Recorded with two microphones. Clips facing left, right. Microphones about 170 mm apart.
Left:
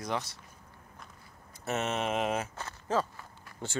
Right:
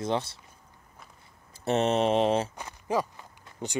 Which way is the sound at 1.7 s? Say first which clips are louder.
Right 8 dB; 30° right (ahead or behind).